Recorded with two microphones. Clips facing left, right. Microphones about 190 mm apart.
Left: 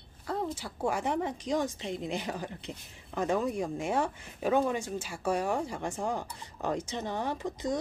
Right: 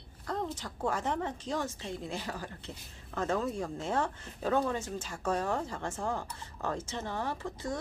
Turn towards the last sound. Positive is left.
turn(degrees=15)  # may be behind; listen again after turning